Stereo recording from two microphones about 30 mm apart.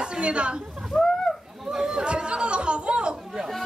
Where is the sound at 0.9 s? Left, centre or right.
Centre.